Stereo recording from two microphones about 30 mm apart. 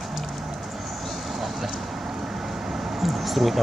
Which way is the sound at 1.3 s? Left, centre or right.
Centre.